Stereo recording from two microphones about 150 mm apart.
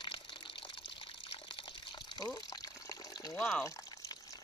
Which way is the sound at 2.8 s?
25° left (ahead or behind).